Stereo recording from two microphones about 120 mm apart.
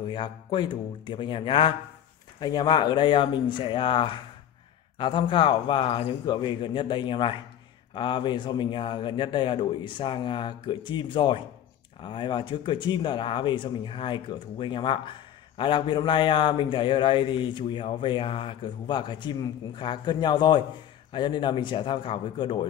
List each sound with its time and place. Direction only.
0.1 s a man's voice: 40° left (ahead or behind)